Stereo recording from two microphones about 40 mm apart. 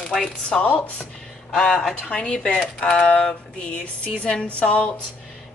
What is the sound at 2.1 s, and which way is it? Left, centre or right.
A woman's voice, left.